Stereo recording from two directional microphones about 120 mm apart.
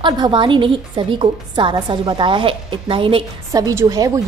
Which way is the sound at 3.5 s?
30° right (ahead or behind).